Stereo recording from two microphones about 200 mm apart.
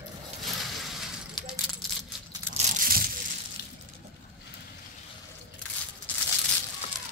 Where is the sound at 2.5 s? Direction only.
45° right (ahead or behind).